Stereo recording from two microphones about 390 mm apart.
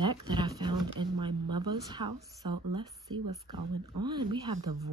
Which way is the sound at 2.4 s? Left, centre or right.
Right.